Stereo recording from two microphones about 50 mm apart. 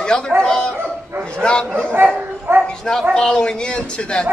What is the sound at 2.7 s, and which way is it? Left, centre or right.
Bow-wow, centre.